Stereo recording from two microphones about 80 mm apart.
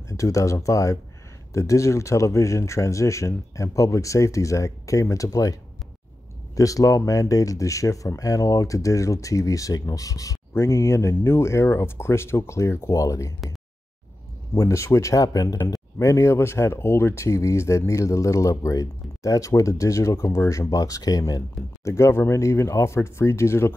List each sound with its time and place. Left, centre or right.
0.1 s speech: left
10.5 s speech: left
14.5 s speech: left
21.8 s speech: left